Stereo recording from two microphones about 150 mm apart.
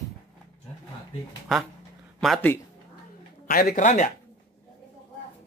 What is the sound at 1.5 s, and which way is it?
Speech, centre (ahead or behind).